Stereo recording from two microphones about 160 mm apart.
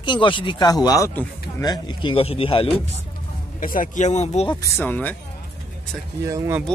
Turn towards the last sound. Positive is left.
turn(degrees=-20)  # may be behind; listen again after turning